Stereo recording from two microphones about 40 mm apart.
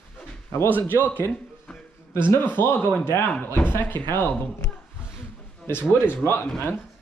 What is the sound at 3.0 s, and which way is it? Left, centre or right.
Speech, left.